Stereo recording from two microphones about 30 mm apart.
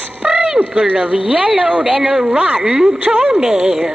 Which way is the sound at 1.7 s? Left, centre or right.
Right.